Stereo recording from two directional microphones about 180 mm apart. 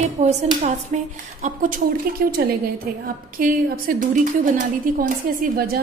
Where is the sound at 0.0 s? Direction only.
40° right (ahead or behind).